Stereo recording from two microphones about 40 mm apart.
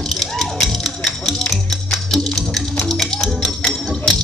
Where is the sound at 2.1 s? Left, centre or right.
Centre.